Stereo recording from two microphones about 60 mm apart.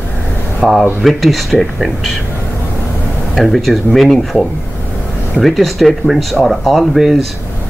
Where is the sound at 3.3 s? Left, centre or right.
Centre.